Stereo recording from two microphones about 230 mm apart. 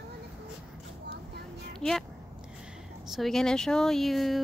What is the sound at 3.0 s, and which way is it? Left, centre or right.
Speech, centre.